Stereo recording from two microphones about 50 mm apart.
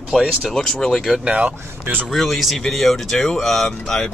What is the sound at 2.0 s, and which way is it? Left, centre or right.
Speech, centre.